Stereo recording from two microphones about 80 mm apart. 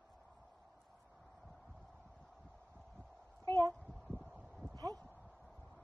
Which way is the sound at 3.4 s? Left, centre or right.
Right.